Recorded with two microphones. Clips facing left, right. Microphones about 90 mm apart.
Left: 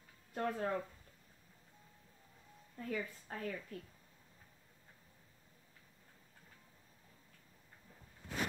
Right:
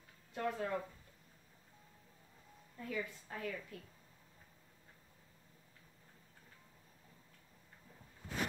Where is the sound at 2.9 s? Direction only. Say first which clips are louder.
Left 1 dB; 40° left (ahead or behind).